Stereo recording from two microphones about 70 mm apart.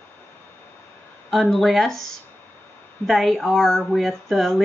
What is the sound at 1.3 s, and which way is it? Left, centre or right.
Speech, centre.